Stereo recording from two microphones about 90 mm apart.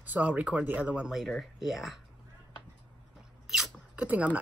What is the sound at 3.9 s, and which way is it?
Speech, 15° right (ahead or behind).